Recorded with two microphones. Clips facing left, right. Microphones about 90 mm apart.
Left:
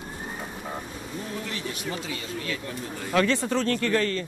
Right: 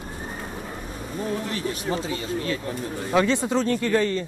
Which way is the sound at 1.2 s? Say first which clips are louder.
Right 6 dB; 35° right (ahead or behind).